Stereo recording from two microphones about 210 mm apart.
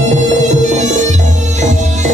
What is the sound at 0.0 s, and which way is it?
Music, 35° right (ahead or behind).